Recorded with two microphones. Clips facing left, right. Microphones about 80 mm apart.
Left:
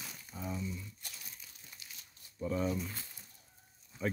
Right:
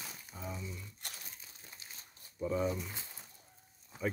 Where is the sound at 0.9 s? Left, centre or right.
Right.